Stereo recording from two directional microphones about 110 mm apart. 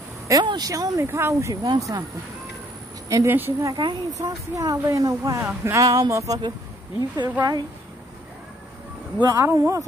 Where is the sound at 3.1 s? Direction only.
30° right (ahead or behind).